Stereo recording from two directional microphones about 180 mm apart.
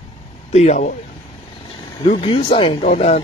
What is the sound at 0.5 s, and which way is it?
Speech, 40° left (ahead or behind).